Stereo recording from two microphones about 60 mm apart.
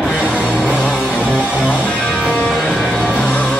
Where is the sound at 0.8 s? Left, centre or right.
Centre.